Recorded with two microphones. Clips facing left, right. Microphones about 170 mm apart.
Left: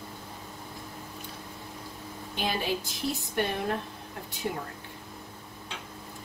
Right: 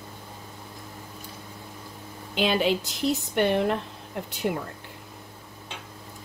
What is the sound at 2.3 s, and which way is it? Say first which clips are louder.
A woman's voice: right 7 dB; 80° right.